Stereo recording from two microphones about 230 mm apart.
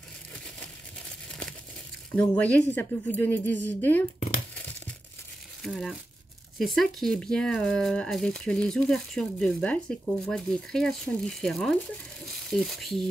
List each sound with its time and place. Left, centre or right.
2.1 s a woman's voice: centre
4.6 s crumpling: centre
5.6 s speech: centre